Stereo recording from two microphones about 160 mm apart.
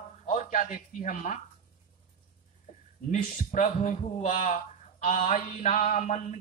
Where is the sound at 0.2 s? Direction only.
45° left (ahead or behind).